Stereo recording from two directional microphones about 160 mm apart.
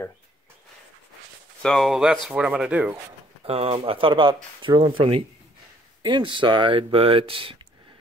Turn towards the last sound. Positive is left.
turn(degrees=-35)  # may be behind; listen again after turning